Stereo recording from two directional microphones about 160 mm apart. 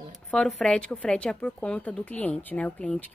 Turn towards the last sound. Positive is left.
turn(degrees=10)  # may be behind; listen again after turning